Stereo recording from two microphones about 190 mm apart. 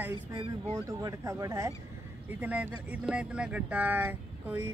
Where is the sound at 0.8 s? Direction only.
15° right (ahead or behind).